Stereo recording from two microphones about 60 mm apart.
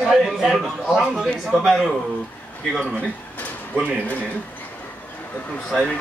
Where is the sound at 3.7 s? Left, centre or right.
Centre.